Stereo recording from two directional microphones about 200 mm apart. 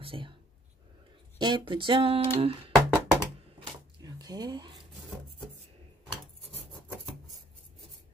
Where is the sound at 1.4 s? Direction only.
25° right (ahead or behind).